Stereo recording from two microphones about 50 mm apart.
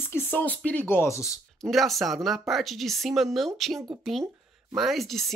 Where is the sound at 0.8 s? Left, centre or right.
Left.